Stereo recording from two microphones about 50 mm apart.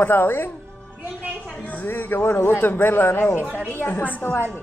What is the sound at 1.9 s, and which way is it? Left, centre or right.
Speech, left.